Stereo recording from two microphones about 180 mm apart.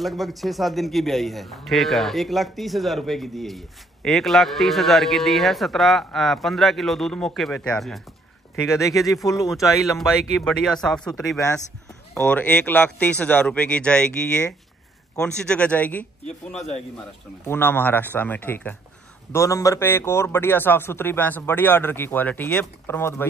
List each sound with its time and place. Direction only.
0.0 s a man's voice: centre (ahead or behind)
8.6 s a man's voice: 15° left (ahead or behind)
9.1 s a man's voice: centre (ahead or behind)
15.1 s a man's voice: 5° left (ahead or behind)
16.3 s speech: 40° left (ahead or behind)
17.5 s a man's voice: 10° left (ahead or behind)